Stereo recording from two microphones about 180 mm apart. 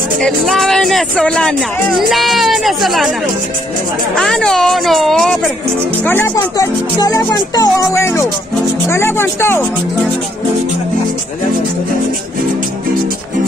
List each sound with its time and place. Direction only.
0.2 s speech: centre (ahead or behind)
4.2 s speech: 5° left (ahead or behind)
6.0 s speech: 15° left (ahead or behind)